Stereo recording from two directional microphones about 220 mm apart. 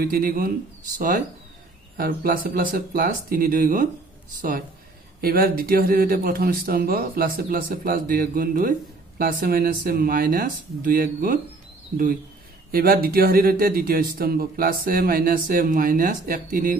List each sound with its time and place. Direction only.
0.0 s speech: 40° right (ahead or behind)
12.7 s speech: 45° right (ahead or behind)